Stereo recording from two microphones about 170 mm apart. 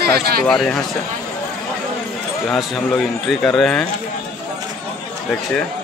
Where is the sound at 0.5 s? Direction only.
Centre (ahead or behind).